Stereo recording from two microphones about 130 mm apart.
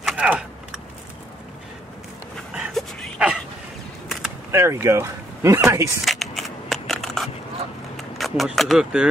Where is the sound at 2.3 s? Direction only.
Centre (ahead or behind).